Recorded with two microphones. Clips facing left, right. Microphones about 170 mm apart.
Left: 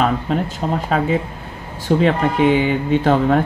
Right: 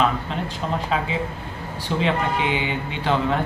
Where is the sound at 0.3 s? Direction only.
45° left (ahead or behind).